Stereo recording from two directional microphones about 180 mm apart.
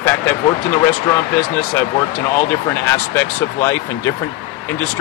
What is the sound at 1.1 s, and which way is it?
A man's voice, 10° left (ahead or behind).